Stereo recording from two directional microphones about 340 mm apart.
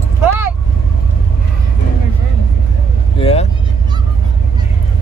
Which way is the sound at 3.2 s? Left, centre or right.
Centre.